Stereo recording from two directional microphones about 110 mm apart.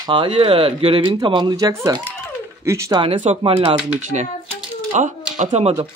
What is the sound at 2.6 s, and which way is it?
Speech, 25° right (ahead or behind).